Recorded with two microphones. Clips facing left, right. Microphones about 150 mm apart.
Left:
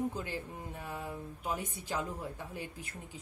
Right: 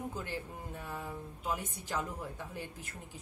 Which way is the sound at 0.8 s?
15° left (ahead or behind).